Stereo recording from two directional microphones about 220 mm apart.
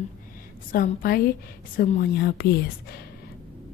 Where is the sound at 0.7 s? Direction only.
40° left (ahead or behind).